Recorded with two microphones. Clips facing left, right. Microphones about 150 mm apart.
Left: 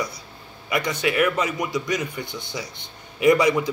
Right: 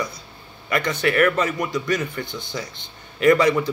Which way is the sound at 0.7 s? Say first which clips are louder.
Right 2 dB; 10° left (ahead or behind).